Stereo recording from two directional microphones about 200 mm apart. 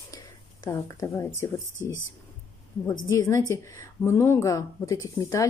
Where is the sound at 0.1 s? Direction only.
15° left (ahead or behind).